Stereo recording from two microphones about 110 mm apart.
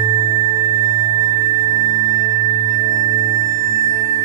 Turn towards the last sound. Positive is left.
turn(degrees=-30)  # may be behind; listen again after turning